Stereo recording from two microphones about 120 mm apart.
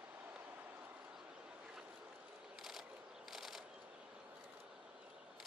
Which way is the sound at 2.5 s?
Centre (ahead or behind).